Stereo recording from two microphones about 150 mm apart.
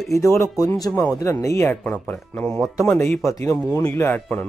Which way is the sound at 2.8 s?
15° left (ahead or behind).